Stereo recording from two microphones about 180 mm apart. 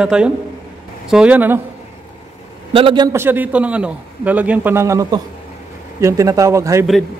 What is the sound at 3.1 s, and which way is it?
A man's voice, 10° right (ahead or behind).